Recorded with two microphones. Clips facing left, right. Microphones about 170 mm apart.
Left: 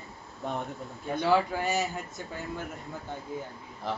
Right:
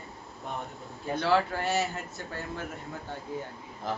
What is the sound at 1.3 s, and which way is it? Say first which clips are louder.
Speech: even; 10° left (ahead or behind).